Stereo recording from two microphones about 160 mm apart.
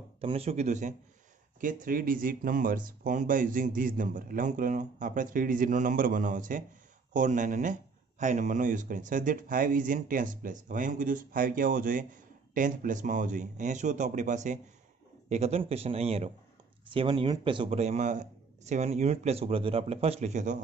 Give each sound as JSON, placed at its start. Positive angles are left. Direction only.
{"t": 0.2, "sound": "a man's voice", "side_deg": -35}